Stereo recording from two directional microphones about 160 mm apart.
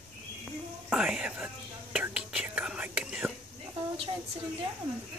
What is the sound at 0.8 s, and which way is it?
Whispering, 5° right (ahead or behind).